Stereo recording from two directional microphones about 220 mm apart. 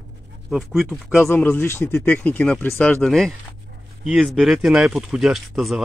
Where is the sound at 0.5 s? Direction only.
Centre (ahead or behind).